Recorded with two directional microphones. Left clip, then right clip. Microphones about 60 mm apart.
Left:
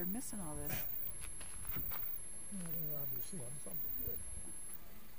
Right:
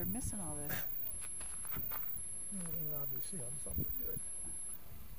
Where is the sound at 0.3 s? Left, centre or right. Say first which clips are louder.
Right 1 dB; centre.